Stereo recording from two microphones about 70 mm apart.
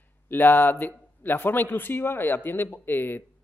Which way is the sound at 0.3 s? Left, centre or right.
Left.